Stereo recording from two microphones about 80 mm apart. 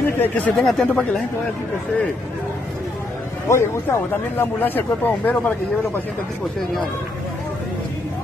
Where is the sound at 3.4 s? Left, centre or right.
Left.